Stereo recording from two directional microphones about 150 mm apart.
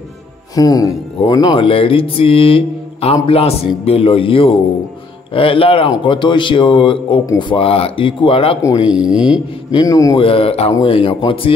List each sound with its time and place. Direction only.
0.6 s music: 25° left (ahead or behind)
8.8 s speech: 5° right (ahead or behind)
9.7 s a man's voice: 25° left (ahead or behind)
10.1 s music: 40° left (ahead or behind)